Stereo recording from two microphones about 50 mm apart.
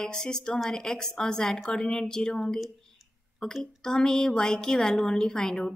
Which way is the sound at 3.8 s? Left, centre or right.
Centre.